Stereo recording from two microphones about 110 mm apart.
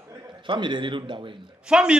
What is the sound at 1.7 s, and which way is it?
Speech, 10° right (ahead or behind).